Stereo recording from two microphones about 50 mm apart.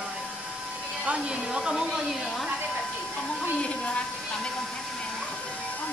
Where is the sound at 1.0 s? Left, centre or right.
Right.